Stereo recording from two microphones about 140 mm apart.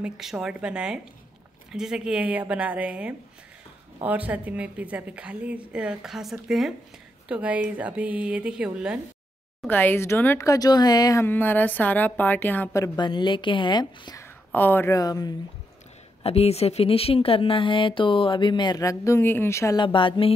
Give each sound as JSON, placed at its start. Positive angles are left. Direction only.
{"t": 0.0, "sound": "a woman's voice", "side_deg": -5}
{"t": 9.7, "sound": "a woman's voice", "side_deg": 15}
{"t": 11.2, "sound": "a woman's voice", "side_deg": 15}
{"t": 14.5, "sound": "a woman's voice", "side_deg": 15}
{"t": 16.2, "sound": "speech", "side_deg": 45}
{"t": 19.8, "sound": "speech", "side_deg": 35}